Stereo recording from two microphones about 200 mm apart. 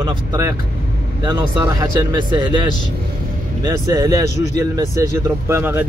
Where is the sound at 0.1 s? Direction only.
20° right (ahead or behind).